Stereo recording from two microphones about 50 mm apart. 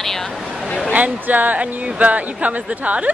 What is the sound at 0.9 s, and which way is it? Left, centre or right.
A woman's voice, right.